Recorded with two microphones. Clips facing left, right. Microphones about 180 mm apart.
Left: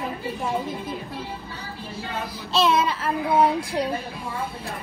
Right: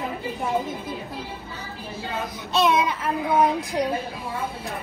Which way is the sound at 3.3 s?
30° left (ahead or behind).